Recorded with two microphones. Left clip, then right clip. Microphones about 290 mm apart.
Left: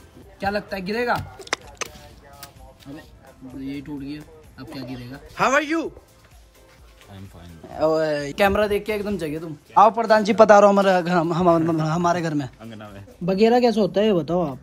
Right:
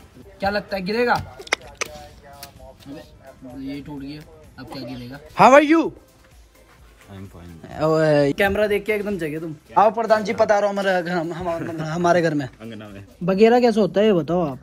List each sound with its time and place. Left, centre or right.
0.5 s speech: centre
3.7 s speech: centre
5.3 s speech: centre
7.7 s speech: right
8.4 s speech: centre
13.3 s speech: centre